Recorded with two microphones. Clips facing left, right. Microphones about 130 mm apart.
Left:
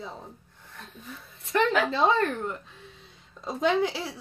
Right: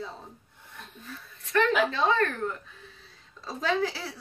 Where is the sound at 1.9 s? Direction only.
25° left (ahead or behind).